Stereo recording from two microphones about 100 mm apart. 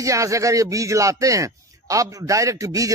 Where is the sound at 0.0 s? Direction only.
30° right (ahead or behind).